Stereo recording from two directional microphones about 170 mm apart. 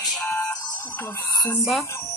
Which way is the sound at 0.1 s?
15° left (ahead or behind).